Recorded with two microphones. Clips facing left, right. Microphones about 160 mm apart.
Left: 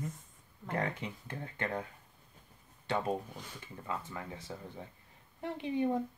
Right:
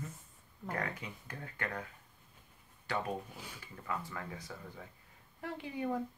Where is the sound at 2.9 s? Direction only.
25° left (ahead or behind).